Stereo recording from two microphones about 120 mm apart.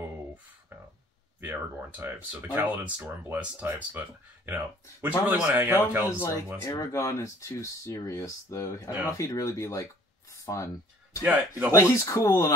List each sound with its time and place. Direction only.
1.4 s speech: 15° right (ahead or behind)
5.0 s speech: 15° right (ahead or behind)
6.0 s speech: 20° left (ahead or behind)
10.3 s a sound: 25° left (ahead or behind)
11.2 s speech: 10° right (ahead or behind)
11.7 s speech: 25° left (ahead or behind)